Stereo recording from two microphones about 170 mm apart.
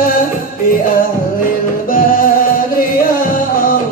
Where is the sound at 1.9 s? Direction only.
55° left (ahead or behind).